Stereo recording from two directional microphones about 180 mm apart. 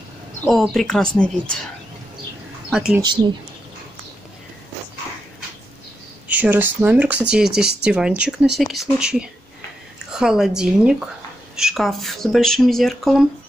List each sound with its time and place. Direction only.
0.4 s speech: centre (ahead or behind)
6.2 s speech: 10° right (ahead or behind)